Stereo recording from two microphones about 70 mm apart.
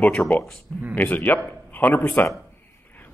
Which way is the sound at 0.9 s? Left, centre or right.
Left.